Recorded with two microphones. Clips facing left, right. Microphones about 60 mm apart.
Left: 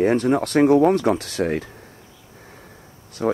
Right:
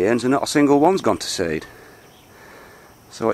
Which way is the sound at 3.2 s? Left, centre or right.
Right.